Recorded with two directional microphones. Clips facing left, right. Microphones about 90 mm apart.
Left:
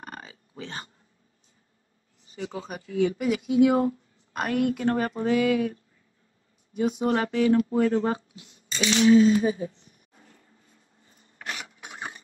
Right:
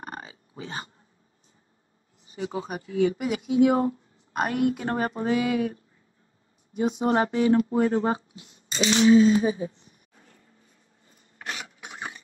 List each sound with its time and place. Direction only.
0.0 s a sound: 20° right (ahead or behind)
0.6 s speech: 10° right (ahead or behind)
2.3 s speech: 15° right (ahead or behind)
4.3 s speech: 15° right (ahead or behind)
8.7 s speech: 35° right (ahead or behind)
9.1 s speech: 25° right (ahead or behind)